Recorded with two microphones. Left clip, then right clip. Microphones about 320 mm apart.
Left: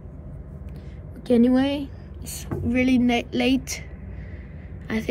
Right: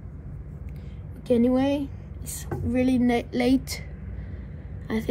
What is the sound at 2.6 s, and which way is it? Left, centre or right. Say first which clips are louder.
A woman's voice: left 2 dB; left.